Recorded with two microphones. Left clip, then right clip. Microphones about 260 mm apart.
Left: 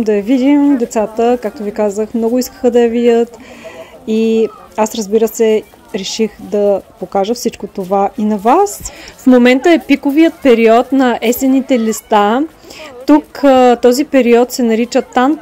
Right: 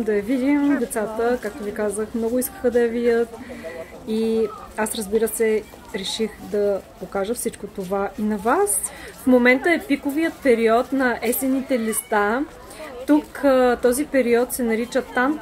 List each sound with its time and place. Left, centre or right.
0.0 s a woman's voice: left